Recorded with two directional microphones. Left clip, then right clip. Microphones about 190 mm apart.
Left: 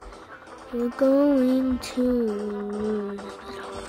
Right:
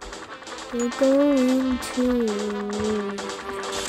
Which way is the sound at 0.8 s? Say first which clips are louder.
Right 1 dB; 25° right (ahead or behind).